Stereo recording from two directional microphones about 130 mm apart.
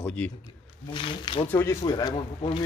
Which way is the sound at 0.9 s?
40° left (ahead or behind).